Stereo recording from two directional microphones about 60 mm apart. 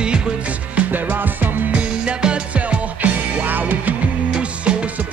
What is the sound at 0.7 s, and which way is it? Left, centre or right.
Music, right.